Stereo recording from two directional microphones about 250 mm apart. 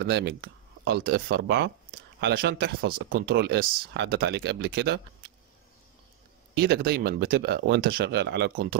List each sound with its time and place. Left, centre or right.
0.0 s speech: right
6.6 s speech: right